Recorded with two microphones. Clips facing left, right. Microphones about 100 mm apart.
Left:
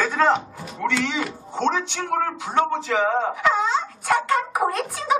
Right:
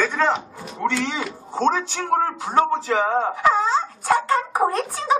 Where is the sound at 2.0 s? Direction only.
35° right (ahead or behind).